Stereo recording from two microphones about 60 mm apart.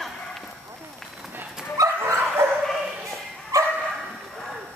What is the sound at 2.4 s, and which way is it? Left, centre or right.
Bow-wow, right.